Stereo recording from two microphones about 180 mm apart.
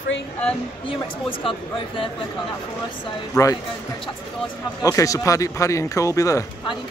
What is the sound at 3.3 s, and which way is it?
Speech, 20° left (ahead or behind).